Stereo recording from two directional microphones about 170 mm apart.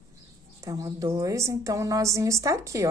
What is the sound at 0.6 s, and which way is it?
A woman's voice, 20° right (ahead or behind).